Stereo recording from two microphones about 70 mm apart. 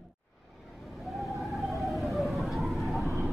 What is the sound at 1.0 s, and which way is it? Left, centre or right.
Vehicle, centre.